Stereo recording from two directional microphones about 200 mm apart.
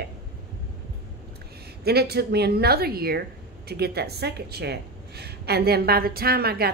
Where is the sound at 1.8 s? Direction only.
55° right (ahead or behind).